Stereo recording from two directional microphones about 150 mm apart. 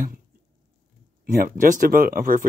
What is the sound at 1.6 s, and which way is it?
Speech, 65° right (ahead or behind).